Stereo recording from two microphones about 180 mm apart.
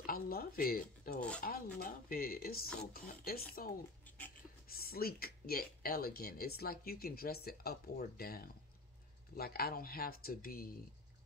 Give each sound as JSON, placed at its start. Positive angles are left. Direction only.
{"t": 0.0, "sound": "speech", "side_deg": 55}